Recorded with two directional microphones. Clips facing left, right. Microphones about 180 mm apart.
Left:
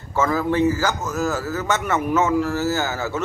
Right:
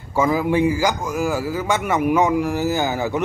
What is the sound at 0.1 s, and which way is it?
A man's voice, 10° right (ahead or behind).